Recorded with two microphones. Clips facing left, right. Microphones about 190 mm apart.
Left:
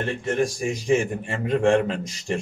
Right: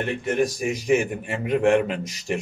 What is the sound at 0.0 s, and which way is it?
Speech, 10° right (ahead or behind).